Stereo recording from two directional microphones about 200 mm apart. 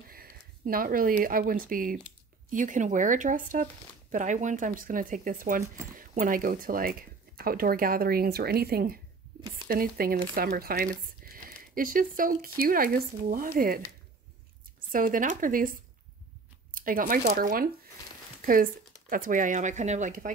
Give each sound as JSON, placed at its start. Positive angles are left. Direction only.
{"t": 0.1, "sound": "speech", "side_deg": -45}
{"t": 14.9, "sound": "speech", "side_deg": -45}
{"t": 16.7, "sound": "speech", "side_deg": -45}